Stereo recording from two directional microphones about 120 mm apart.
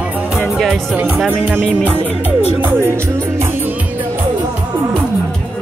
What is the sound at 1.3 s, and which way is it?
Music, 15° right (ahead or behind).